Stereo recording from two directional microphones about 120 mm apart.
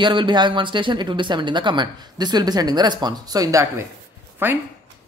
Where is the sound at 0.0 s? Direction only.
40° right (ahead or behind).